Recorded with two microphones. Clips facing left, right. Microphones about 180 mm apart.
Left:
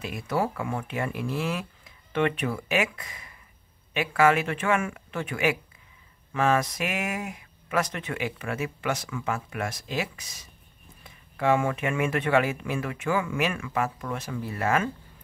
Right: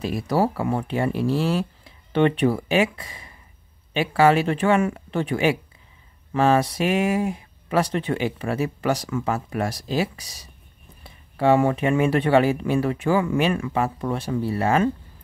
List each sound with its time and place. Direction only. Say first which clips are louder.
0.0 s speech: right 6 dB; 35° right (ahead or behind)